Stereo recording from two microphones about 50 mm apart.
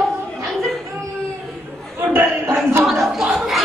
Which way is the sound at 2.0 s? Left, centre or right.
Right.